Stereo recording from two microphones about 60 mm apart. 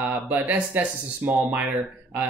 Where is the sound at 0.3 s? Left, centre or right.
Right.